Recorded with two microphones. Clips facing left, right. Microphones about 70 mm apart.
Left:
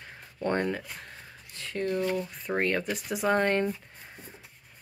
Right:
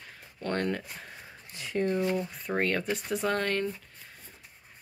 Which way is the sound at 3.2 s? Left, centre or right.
Left.